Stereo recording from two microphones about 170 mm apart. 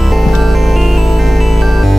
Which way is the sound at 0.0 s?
Centre (ahead or behind).